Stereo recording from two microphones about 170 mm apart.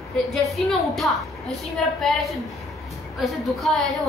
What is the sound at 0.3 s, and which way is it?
A woman's voice, centre (ahead or behind).